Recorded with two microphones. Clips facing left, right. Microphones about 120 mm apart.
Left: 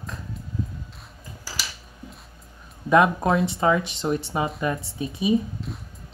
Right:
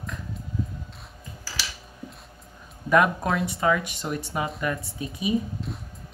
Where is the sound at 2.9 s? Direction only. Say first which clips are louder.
Left 3 dB; 25° left (ahead or behind).